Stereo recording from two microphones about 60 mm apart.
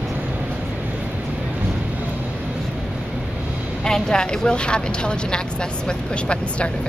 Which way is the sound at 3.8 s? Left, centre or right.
Centre.